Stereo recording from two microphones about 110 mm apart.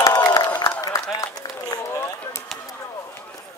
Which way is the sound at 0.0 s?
30° left (ahead or behind).